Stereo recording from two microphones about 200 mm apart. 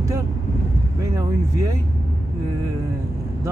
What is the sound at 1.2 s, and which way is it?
Speech, 15° right (ahead or behind).